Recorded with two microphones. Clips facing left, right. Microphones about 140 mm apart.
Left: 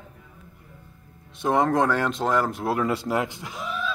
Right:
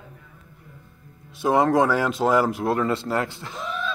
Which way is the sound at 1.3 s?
5° right (ahead or behind).